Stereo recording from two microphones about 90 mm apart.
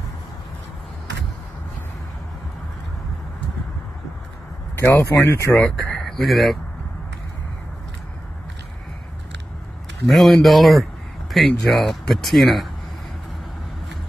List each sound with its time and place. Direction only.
4.7 s speech: 25° left (ahead or behind)
5.7 s speech: 5° left (ahead or behind)
10.0 s speech: centre (ahead or behind)